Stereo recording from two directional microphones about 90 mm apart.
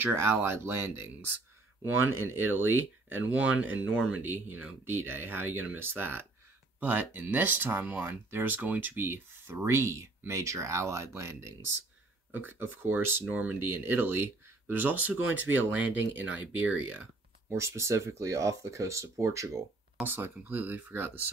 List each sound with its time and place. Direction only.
0.0 s speech: 30° right (ahead or behind)
17.6 s speech: 30° right (ahead or behind)
20.0 s speech: 20° right (ahead or behind)